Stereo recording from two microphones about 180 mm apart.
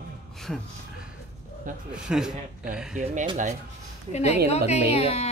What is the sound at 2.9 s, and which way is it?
Speech, 45° right (ahead or behind).